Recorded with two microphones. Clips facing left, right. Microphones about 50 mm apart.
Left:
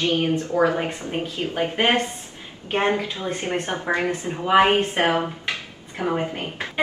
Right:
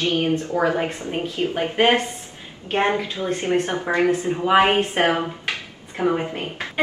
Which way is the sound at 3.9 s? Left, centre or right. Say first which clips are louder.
Right 2 dB; centre.